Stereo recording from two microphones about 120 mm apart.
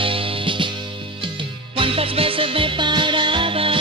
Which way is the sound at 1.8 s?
50° right (ahead or behind).